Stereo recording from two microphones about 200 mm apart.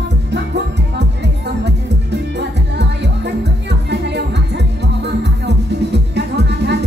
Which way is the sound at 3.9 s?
60° right (ahead or behind).